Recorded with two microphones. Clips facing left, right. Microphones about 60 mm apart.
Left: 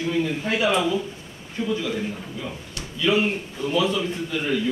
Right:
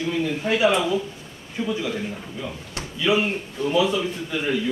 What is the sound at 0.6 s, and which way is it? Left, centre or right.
A man's voice, centre.